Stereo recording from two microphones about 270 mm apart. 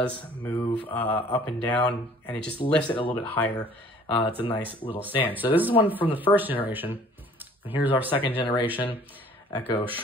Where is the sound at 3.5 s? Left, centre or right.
Centre.